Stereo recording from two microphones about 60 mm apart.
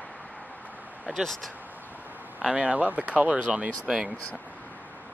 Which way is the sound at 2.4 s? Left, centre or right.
Right.